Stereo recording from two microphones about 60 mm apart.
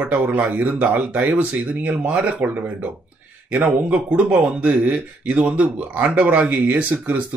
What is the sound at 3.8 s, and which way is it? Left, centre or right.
Speech, right.